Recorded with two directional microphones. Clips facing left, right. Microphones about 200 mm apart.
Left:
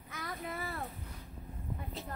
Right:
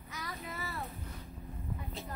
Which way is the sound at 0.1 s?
55° left (ahead or behind).